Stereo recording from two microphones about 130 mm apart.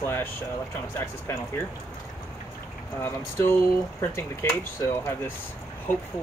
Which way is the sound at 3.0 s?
20° left (ahead or behind).